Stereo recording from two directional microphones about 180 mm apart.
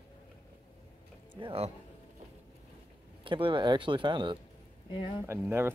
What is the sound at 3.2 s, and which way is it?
Speech, 30° right (ahead or behind).